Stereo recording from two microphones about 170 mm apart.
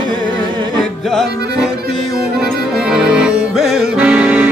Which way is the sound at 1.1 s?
Centre (ahead or behind).